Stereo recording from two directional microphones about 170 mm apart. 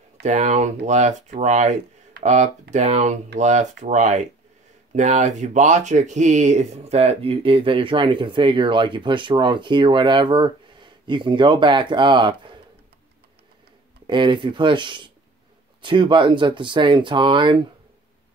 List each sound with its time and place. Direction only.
0.2 s speech: 45° right (ahead or behind); by 12.5 s 30° right (ahead or behind)
14.0 s speech: 30° right (ahead or behind)